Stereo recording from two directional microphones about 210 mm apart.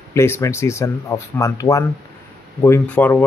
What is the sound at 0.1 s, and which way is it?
Speech, 15° left (ahead or behind).